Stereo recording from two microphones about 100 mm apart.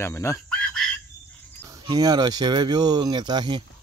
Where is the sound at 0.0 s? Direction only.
30° left (ahead or behind).